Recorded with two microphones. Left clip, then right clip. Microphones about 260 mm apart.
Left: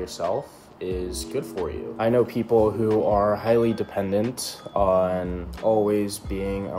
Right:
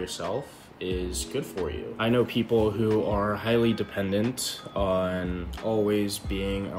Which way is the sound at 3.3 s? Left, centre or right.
Right.